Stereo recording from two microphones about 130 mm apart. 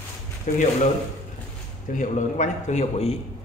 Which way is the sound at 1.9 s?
70° left (ahead or behind).